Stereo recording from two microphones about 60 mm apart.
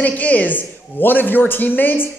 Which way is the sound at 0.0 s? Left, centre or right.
Left.